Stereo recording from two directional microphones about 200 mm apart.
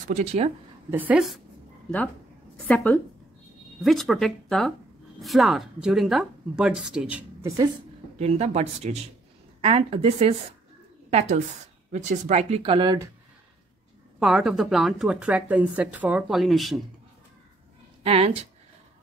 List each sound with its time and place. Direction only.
0.1 s speech: 30° right (ahead or behind)
0.8 s a woman's voice: 10° right (ahead or behind)
2.5 s a woman's voice: 5° left (ahead or behind)
8.2 s speech: 35° right (ahead or behind)
14.2 s speech: centre (ahead or behind)
18.0 s speech: 30° right (ahead or behind)